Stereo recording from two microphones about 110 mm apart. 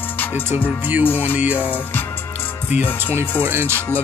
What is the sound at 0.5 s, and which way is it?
Music, 60° left (ahead or behind).